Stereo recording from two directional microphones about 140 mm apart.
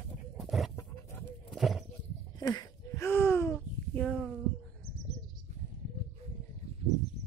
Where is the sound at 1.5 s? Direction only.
Centre (ahead or behind).